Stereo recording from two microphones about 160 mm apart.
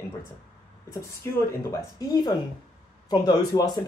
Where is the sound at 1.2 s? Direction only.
20° left (ahead or behind).